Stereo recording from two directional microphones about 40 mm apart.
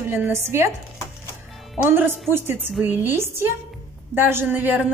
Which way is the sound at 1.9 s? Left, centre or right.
Right.